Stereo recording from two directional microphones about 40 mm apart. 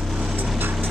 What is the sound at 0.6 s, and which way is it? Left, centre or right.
Vehicle, right.